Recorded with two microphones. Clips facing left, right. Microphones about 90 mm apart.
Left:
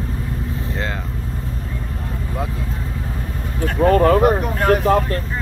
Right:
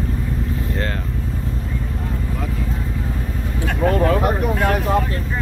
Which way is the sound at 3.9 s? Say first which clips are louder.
Left 5 dB; 50° left (ahead or behind).